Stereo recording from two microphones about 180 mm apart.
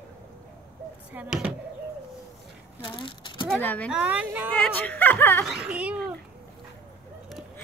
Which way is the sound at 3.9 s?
10° right (ahead or behind).